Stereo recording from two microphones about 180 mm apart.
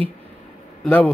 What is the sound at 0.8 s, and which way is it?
Speech, 10° left (ahead or behind).